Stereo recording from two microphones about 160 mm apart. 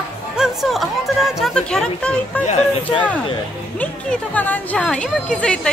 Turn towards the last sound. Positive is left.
turn(degrees=5)  # may be behind; listen again after turning